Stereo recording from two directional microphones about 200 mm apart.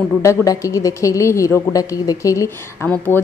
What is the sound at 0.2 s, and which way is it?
A woman's voice, 15° left (ahead or behind).